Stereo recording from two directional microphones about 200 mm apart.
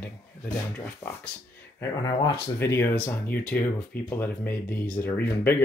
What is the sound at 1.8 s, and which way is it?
Speech, 20° left (ahead or behind).